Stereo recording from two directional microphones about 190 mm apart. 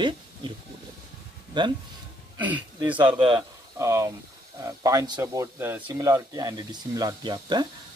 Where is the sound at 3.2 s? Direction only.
20° right (ahead or behind).